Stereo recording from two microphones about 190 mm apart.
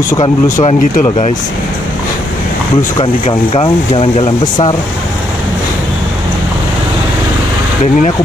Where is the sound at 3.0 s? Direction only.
30° left (ahead or behind).